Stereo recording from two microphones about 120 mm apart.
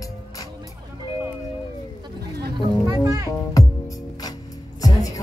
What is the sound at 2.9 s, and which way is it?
Music, 30° right (ahead or behind).